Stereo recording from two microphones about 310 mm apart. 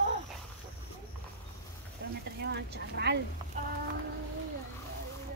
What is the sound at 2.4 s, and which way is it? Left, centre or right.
Speech, right.